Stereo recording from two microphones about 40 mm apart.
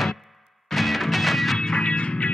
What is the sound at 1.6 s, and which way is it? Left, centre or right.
Music, left.